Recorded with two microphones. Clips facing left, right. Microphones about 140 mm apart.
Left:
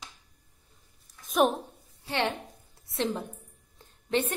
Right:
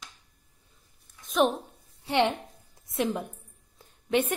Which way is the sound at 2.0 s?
20° right (ahead or behind).